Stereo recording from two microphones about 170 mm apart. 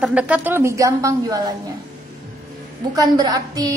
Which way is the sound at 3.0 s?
20° right (ahead or behind).